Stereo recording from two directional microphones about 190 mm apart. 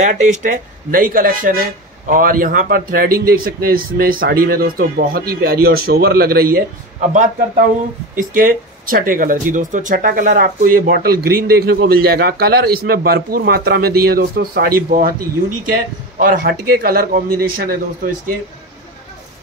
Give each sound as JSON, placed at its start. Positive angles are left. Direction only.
{"t": 0.0, "sound": "speech", "side_deg": -40}